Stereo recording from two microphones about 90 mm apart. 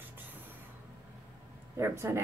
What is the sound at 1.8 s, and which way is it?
Speech, 30° right (ahead or behind).